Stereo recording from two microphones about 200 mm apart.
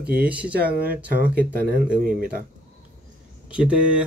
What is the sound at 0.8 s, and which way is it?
Speech, 45° right (ahead or behind).